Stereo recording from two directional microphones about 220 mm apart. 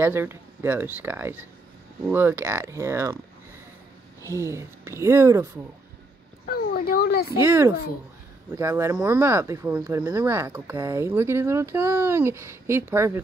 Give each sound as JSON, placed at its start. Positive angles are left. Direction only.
{"t": 0.0, "sound": "speech", "side_deg": -10}
{"t": 4.4, "sound": "speech", "side_deg": -15}
{"t": 6.4, "sound": "a sound", "side_deg": 40}
{"t": 7.3, "sound": "speech", "side_deg": -10}